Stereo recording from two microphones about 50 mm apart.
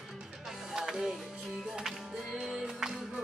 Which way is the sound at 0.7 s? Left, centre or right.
Centre.